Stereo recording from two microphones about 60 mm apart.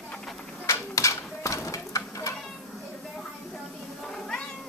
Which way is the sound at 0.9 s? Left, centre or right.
Left.